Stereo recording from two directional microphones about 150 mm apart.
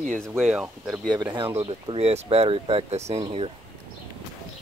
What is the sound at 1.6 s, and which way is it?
Speech, 40° right (ahead or behind).